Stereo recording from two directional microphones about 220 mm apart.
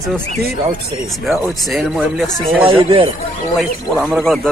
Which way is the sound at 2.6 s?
25° right (ahead or behind).